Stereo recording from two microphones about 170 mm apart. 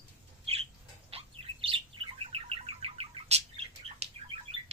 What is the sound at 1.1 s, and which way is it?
Bird, 35° right (ahead or behind).